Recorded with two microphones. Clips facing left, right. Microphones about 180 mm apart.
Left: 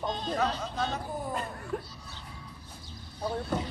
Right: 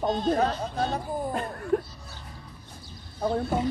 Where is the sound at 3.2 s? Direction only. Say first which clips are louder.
Right 5 dB; 50° right (ahead or behind).